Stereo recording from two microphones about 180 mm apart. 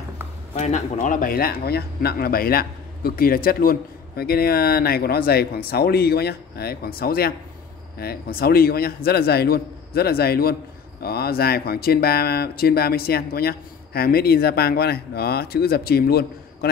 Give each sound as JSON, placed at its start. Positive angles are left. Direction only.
{"t": 0.6, "sound": "speech", "side_deg": 40}